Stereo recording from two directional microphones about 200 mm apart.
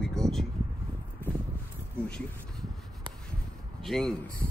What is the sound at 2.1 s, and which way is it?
Speech, 5° left (ahead or behind).